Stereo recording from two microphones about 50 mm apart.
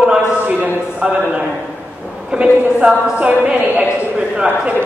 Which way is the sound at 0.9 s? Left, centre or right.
Centre.